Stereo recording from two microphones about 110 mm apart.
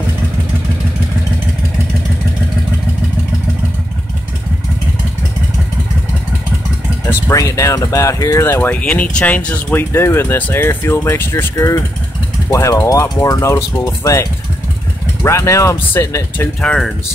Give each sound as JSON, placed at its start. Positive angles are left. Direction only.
{"t": 7.1, "sound": "speech", "side_deg": 25}
{"t": 15.2, "sound": "speech", "side_deg": 25}
{"t": 16.3, "sound": "speech", "side_deg": 5}